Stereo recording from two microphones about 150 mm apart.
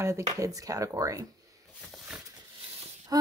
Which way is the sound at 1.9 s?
5° right (ahead or behind).